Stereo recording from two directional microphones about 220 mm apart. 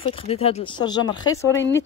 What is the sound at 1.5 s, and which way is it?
Speech, 55° left (ahead or behind).